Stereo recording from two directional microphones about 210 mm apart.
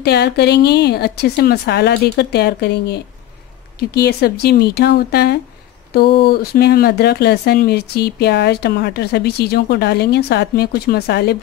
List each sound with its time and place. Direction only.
0.0 s speech: 50° left (ahead or behind)